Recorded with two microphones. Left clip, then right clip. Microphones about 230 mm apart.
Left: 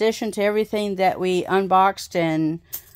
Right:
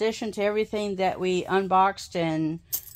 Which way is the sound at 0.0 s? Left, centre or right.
Left.